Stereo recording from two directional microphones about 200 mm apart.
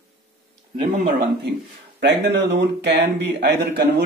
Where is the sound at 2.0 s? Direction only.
60° right (ahead or behind).